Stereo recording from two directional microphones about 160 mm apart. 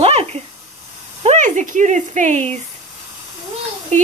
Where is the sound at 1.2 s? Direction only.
50° right (ahead or behind).